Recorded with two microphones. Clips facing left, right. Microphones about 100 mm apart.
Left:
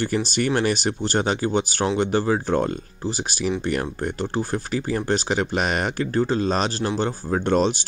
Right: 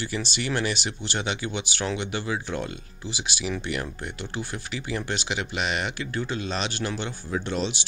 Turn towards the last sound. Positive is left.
turn(degrees=45)  # may be behind; listen again after turning